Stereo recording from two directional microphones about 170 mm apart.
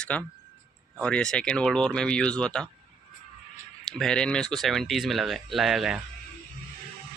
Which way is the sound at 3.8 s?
5° left (ahead or behind).